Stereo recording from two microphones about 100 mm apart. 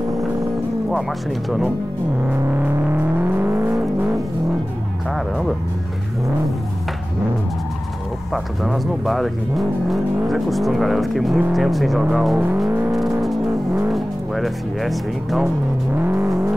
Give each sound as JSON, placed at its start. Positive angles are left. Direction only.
{"t": 2.2, "sound": "music", "side_deg": -15}
{"t": 8.3, "sound": "speech", "side_deg": 0}
{"t": 12.6, "sound": "vehicle", "side_deg": -20}
{"t": 13.8, "sound": "speech", "side_deg": 0}
{"t": 16.0, "sound": "vehicle", "side_deg": -25}